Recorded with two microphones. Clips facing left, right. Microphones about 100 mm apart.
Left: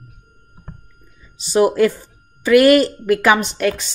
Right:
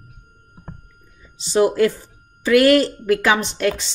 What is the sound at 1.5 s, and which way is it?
Speech, 70° left (ahead or behind).